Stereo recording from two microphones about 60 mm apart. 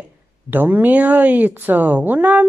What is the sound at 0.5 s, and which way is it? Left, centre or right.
Speech, right.